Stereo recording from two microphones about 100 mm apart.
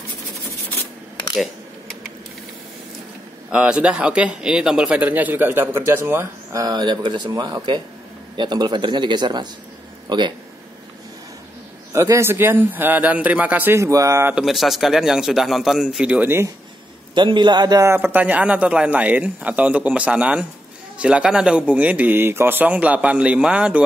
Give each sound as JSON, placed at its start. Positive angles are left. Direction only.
{"t": 1.3, "sound": "computer keyboard", "side_deg": 0}
{"t": 3.5, "sound": "speech", "side_deg": -10}
{"t": 6.6, "sound": "speech", "side_deg": -45}
{"t": 11.9, "sound": "a man's voice", "side_deg": -25}
{"t": 13.7, "sound": "a man's voice", "side_deg": -30}
{"t": 14.3, "sound": "a man's voice", "side_deg": 0}
{"t": 17.1, "sound": "speech", "side_deg": -50}
{"t": 17.8, "sound": "speech", "side_deg": -20}